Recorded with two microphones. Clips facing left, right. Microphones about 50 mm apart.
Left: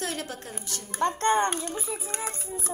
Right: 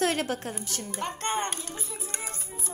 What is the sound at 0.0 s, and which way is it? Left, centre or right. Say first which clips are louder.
Music: right 6 dB; right.